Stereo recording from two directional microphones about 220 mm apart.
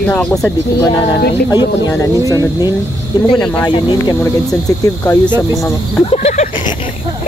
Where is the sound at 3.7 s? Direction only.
20° left (ahead or behind).